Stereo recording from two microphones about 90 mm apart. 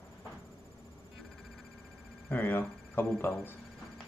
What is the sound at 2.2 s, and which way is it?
Speech, 20° left (ahead or behind).